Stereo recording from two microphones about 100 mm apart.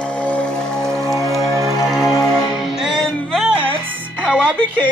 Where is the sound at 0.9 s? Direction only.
30° right (ahead or behind).